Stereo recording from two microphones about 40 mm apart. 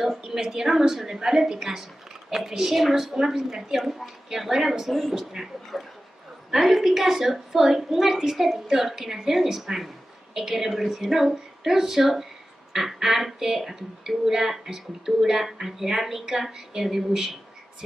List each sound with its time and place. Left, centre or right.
0.2 s a woman's voice: centre